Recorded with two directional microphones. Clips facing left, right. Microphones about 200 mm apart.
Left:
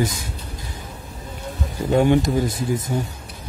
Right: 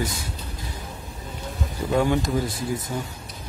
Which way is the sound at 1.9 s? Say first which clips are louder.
Left 5 dB; 20° left (ahead or behind).